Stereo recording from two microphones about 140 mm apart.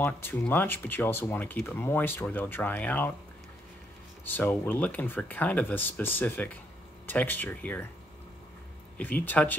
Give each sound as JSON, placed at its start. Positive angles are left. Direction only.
{"t": 0.0, "sound": "speech", "side_deg": 15}
{"t": 4.2, "sound": "speech", "side_deg": 15}
{"t": 8.9, "sound": "speech", "side_deg": 10}